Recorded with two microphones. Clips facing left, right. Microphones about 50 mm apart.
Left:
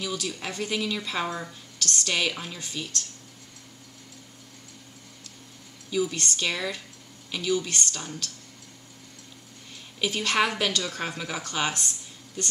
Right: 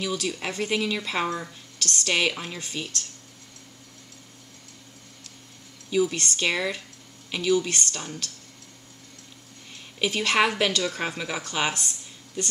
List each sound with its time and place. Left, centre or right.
0.0 s speech: centre
5.9 s speech: centre
9.9 s speech: centre